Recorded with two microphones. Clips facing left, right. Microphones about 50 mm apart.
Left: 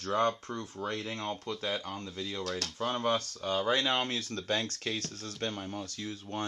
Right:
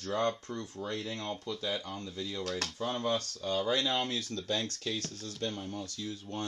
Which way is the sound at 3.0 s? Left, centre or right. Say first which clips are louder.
Left 2 dB; left.